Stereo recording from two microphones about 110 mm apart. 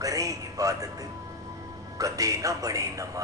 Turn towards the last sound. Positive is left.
turn(degrees=-30)  # may be behind; listen again after turning